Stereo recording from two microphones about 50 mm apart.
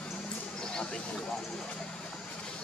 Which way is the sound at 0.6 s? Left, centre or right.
Centre.